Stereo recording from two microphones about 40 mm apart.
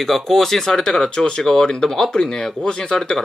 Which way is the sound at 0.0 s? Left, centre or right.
Centre.